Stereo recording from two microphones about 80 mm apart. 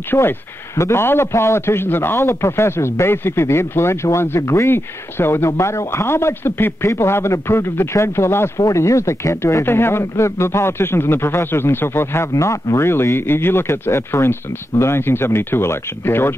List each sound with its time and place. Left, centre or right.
0.1 s speech: left